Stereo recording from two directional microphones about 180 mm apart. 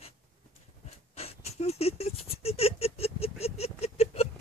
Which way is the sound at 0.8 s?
35° left (ahead or behind).